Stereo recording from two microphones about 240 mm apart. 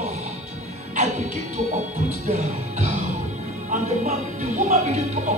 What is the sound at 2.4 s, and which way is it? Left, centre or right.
Speech, right.